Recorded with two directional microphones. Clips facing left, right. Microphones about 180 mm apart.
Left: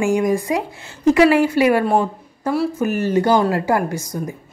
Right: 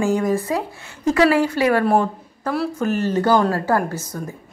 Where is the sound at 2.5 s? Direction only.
Centre (ahead or behind).